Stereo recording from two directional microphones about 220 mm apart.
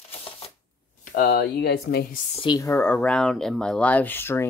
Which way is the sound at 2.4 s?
15° left (ahead or behind).